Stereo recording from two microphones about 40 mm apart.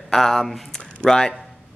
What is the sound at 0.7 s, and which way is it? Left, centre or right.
Speech, left.